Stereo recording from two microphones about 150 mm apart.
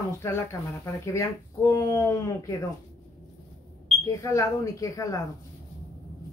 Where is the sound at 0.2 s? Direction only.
15° left (ahead or behind).